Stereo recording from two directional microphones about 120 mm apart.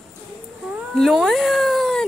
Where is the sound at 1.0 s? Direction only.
Centre (ahead or behind).